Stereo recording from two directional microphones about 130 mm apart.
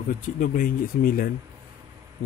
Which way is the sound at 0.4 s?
90° left.